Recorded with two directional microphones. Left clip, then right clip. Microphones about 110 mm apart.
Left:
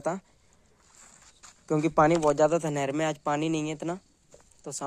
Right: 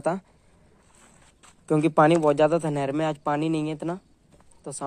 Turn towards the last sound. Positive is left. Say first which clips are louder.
# right 1 dB
turn(degrees=20)  # may be behind; listen again after turning